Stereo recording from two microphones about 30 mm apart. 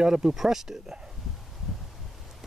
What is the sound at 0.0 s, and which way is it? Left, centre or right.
Speech, right.